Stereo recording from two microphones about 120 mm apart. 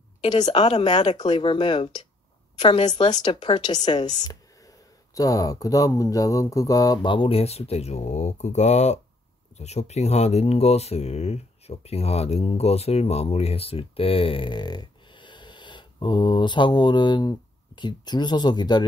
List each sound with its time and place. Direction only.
0.2 s a woman's voice: 35° left (ahead or behind)
0.7 s speech: 65° left (ahead or behind)
1.3 s speech: 45° left (ahead or behind)
2.6 s speech: 65° left (ahead or behind)
3.1 s speech: 35° left (ahead or behind)